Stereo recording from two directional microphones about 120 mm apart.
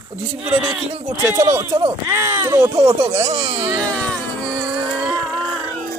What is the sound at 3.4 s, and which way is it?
Speech, 40° right (ahead or behind).